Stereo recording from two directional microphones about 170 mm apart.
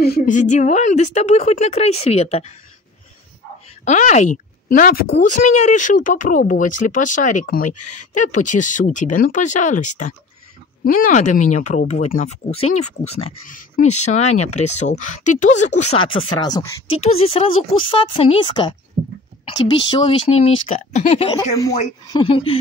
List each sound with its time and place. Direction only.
0.0 s a woman's voice: 60° left (ahead or behind); by 2.5 s 40° left (ahead or behind)
3.8 s speech: 45° left (ahead or behind)
16.1 s a woman's voice: 30° left (ahead or behind)
19.8 s a woman's voice: 30° left (ahead or behind)
21.4 s speech: 20° left (ahead or behind)